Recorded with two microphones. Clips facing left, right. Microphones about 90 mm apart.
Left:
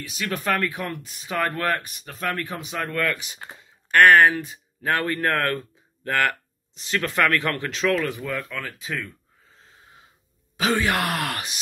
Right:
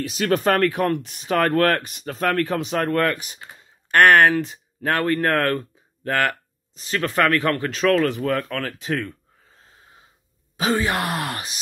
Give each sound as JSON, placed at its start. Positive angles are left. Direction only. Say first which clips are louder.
{"t": 0.0, "sound": "speech", "louder": "right 8 dB", "side_deg": -65}
{"t": 2.2, "sound": "speech", "louder": "right 7 dB", "side_deg": -70}
{"t": 5.4, "sound": "speech", "louder": "right 3 dB", "side_deg": -35}
{"t": 8.1, "sound": "speech", "louder": "right 6 dB", "side_deg": -55}
{"t": 10.6, "sound": "speech", "louder": "right 1 dB", "side_deg": -35}